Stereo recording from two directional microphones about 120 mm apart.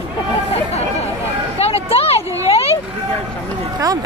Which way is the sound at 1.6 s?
55° left (ahead or behind).